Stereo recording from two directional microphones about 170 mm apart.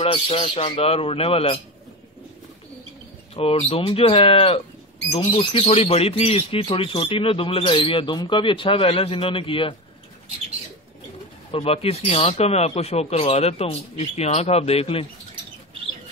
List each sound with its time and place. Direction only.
0.0 s speech: 30° left (ahead or behind)
3.3 s speech: 35° left (ahead or behind)
11.5 s speech: 35° left (ahead or behind)